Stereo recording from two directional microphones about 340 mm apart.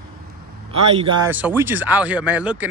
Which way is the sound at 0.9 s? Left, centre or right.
Centre.